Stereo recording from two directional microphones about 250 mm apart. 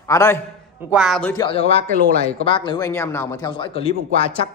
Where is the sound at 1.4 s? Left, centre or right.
Left.